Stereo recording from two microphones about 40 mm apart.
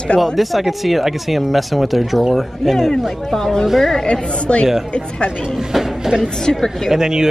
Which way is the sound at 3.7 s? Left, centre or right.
Centre.